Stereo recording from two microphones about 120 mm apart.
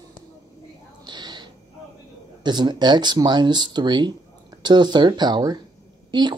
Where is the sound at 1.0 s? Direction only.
40° right (ahead or behind).